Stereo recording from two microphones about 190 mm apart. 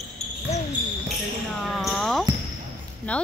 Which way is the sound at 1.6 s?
Centre (ahead or behind).